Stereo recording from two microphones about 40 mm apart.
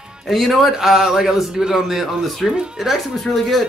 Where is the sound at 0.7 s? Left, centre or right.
Centre.